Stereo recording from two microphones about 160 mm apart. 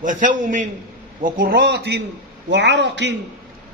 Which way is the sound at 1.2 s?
65° right (ahead or behind).